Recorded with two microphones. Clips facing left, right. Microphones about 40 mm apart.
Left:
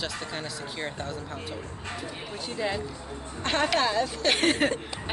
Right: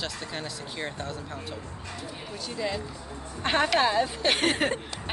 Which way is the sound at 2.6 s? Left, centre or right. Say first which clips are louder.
Left 1 dB; centre.